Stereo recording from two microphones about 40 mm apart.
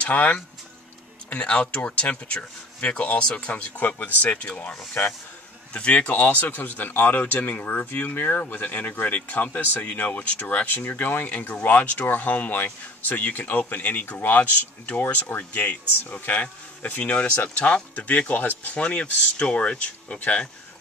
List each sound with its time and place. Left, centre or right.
0.0 s speech: left
4.7 s speech: left
5.7 s speech: left
6.4 s speech: left
7.4 s speech: left
18.8 s speech: left